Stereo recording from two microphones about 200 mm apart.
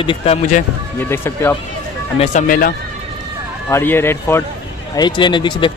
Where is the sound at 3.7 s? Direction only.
10° left (ahead or behind).